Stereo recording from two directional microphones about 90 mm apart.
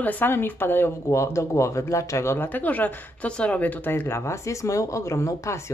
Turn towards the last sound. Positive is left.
turn(degrees=35)  # may be behind; listen again after turning